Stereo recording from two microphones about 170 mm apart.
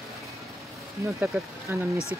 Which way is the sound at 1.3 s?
10° right (ahead or behind).